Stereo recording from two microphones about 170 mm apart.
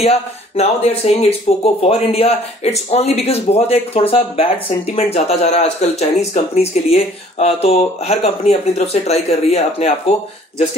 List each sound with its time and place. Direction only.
0.6 s speech: 40° left (ahead or behind)